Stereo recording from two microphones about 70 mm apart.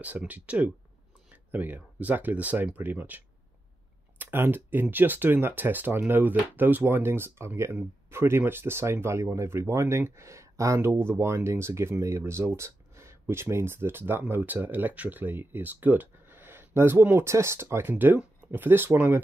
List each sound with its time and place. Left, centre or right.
0.3 s speech: right